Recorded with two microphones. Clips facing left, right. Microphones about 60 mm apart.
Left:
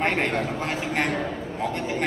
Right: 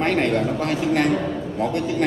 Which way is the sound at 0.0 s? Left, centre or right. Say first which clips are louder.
Right 4 dB; left.